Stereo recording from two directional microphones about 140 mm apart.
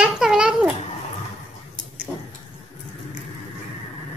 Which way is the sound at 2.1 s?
10° right (ahead or behind).